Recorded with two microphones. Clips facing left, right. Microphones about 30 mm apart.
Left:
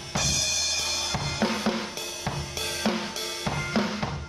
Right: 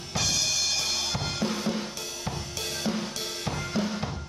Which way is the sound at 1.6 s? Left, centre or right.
Left.